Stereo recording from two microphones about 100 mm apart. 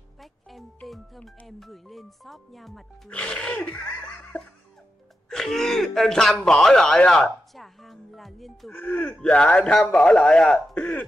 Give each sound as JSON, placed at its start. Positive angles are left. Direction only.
{"t": 0.2, "sound": "music", "side_deg": 0}
{"t": 0.8, "sound": "speech", "side_deg": 0}
{"t": 3.1, "sound": "music", "side_deg": 10}
{"t": 5.3, "sound": "speech", "side_deg": 5}
{"t": 9.2, "sound": "music", "side_deg": 10}